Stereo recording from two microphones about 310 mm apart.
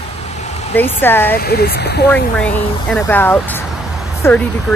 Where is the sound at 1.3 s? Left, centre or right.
Left.